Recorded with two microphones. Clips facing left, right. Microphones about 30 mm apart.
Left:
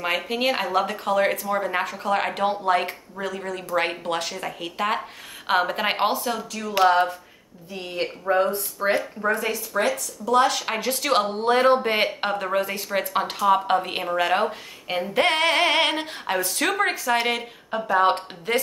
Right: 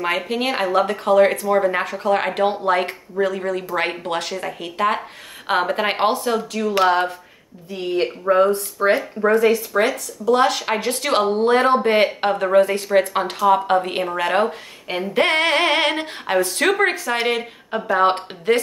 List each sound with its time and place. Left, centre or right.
0.0 s speech: centre; by 18.5 s right